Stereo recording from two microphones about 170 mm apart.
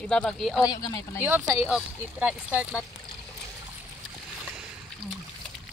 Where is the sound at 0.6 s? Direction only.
25° left (ahead or behind).